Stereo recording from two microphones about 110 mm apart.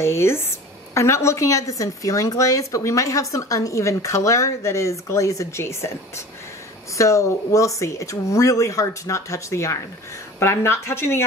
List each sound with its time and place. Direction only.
0.0 s a woman's voice: 25° left (ahead or behind)